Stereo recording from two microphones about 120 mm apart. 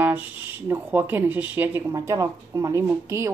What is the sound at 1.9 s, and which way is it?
Speech, 25° right (ahead or behind).